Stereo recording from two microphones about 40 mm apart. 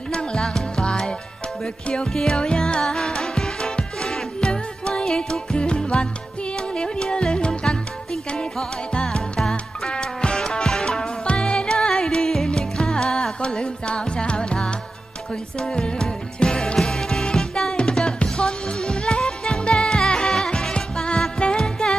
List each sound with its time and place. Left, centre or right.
0.1 s music: left
8.9 s music: centre
20.5 s music: left